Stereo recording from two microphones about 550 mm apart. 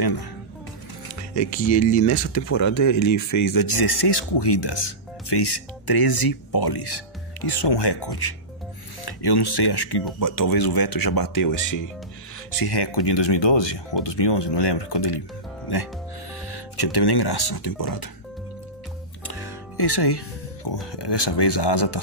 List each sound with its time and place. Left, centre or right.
0.0 s speech: left
1.3 s speech: left
16.4 s speech: left
19.2 s speech: left